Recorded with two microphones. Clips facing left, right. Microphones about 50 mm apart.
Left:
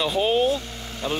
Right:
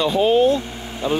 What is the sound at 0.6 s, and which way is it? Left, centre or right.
Speech, right.